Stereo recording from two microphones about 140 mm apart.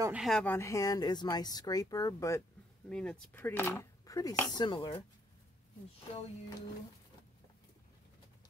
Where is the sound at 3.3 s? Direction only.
15° left (ahead or behind); by 5.0 s 35° left (ahead or behind).